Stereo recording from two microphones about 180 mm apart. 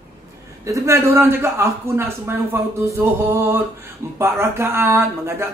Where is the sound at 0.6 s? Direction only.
15° right (ahead or behind).